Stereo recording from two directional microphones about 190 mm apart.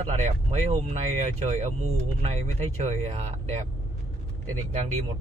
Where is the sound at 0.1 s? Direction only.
35° right (ahead or behind).